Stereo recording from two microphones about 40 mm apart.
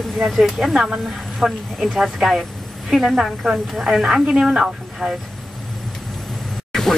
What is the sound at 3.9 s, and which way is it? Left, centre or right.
A woman's voice, centre.